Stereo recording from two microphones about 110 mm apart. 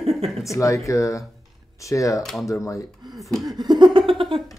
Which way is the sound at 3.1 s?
Centre (ahead or behind).